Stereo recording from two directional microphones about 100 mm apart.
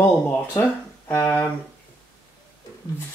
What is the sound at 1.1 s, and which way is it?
Speech, 20° left (ahead or behind).